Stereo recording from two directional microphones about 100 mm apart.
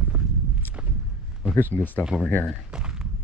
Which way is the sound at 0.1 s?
10° right (ahead or behind).